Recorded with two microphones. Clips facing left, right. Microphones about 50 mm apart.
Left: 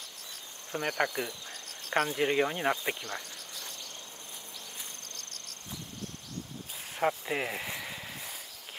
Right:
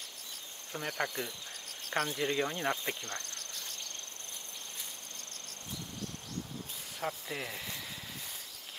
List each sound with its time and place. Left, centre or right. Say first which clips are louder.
0.7 s speech: left 5 dB; centre
2.1 s speech: left 5 dB; centre
5.1 s cricket: left 1 dB; right
7.0 s a sound: left 8 dB; left